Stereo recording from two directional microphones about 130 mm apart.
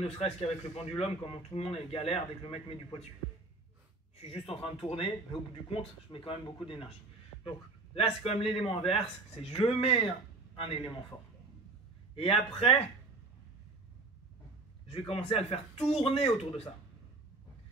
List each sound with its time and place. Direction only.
0.0 s a man's voice: 50° left (ahead or behind)
4.2 s a man's voice: 50° left (ahead or behind)
12.2 s a man's voice: 50° left (ahead or behind)
14.9 s a man's voice: 50° left (ahead or behind)